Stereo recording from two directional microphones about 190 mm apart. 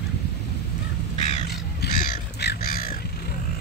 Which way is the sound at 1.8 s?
60° left (ahead or behind).